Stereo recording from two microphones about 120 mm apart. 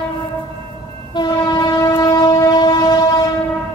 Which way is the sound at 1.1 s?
35° left (ahead or behind).